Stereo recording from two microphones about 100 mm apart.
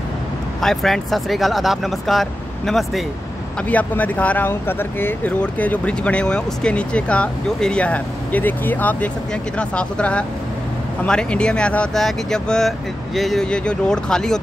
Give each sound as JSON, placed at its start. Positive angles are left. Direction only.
{"t": 0.6, "sound": "speech", "side_deg": 5}
{"t": 3.6, "sound": "speech", "side_deg": 15}